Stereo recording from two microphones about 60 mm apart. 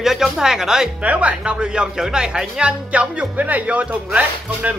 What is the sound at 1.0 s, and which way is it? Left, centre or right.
Speech, right.